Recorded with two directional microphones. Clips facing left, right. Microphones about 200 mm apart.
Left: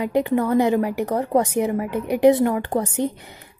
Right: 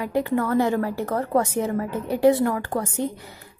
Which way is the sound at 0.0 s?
20° left (ahead or behind).